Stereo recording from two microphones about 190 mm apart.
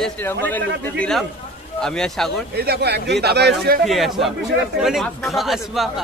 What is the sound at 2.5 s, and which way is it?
Speech, 55° right (ahead or behind).